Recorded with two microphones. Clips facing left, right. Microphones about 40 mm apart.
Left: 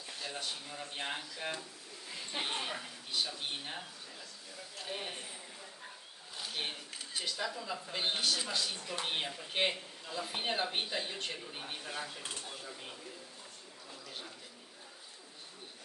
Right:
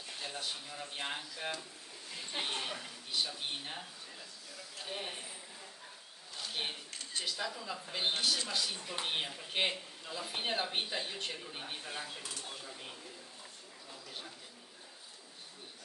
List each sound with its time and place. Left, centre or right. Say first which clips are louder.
0.4 s a man's voice: even; centre
6.5 s a man's voice: even; centre
12.2 s speech: left 1 dB; left
12.4 s a man's voice: even; centre